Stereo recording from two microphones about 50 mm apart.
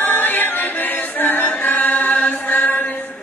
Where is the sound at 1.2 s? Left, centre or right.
Left.